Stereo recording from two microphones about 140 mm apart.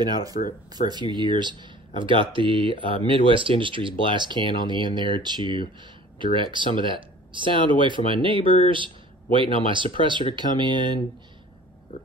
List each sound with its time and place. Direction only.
0.0 s speech: 25° right (ahead or behind)